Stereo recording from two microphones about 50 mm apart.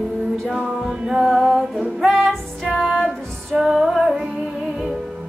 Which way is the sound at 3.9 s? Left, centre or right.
Centre.